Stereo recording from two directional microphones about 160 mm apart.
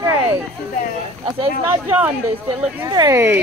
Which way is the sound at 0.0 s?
20° right (ahead or behind).